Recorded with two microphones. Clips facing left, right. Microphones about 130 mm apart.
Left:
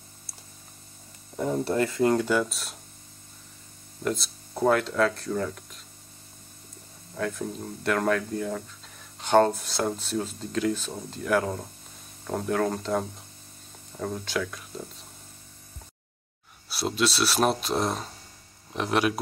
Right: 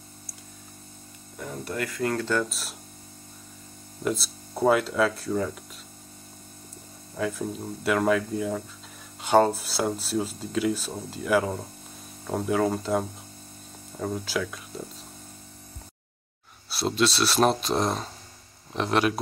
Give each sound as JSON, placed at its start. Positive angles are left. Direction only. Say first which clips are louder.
{"t": 1.4, "sound": "speech", "louder": "left 7 dB", "side_deg": 30}
{"t": 4.0, "sound": "speech", "louder": "right 1 dB", "side_deg": -5}
{"t": 7.2, "sound": "speech", "louder": "right 1 dB", "side_deg": -5}
{"t": 16.6, "sound": "speech", "louder": "right 2 dB", "side_deg": 10}